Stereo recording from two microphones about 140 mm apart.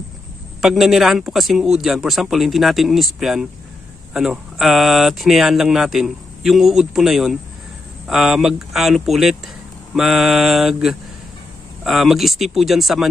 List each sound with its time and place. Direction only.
0.6 s speech: centre (ahead or behind)